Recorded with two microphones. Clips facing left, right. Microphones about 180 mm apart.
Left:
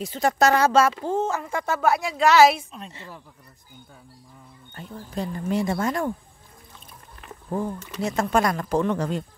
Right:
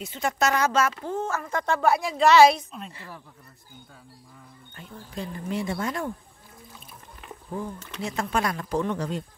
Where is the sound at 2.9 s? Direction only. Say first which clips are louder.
Left 1 dB; 20° left (ahead or behind).